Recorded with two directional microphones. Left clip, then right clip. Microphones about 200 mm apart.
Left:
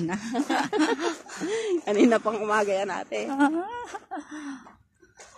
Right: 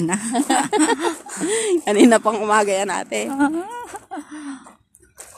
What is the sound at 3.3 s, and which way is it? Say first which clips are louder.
Speech: right 1 dB; 5° right (ahead or behind).